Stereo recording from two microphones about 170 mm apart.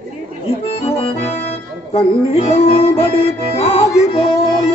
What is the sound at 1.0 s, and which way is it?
Music, 35° left (ahead or behind).